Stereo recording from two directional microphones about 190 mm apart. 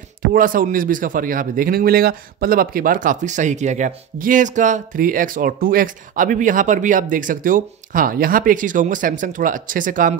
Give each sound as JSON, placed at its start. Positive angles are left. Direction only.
{"t": 0.2, "sound": "speech", "side_deg": -45}